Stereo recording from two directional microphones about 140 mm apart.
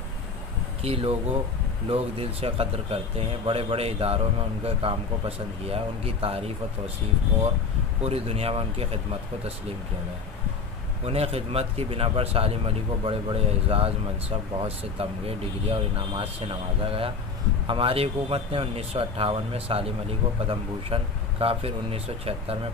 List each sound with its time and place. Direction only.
0.8 s speech: 45° right (ahead or behind)
8.0 s speech: 45° right (ahead or behind)
11.1 s speech: 45° right (ahead or behind)